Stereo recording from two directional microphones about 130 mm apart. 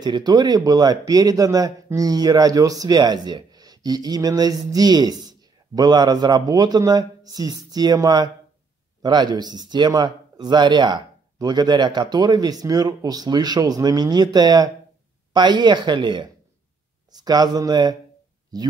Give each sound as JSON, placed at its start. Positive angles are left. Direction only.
{"t": 0.0, "sound": "speech", "side_deg": -35}